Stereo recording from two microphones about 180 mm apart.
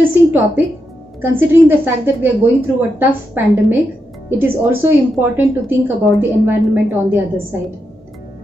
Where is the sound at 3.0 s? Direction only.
10° right (ahead or behind).